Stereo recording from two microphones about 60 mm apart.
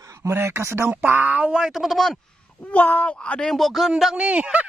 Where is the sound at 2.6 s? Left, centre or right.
Left.